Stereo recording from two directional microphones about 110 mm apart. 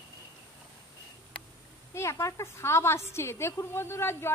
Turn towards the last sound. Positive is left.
turn(degrees=25)  # may be behind; listen again after turning